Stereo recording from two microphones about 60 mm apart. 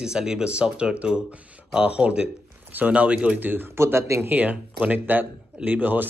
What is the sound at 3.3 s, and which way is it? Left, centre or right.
Speech, right.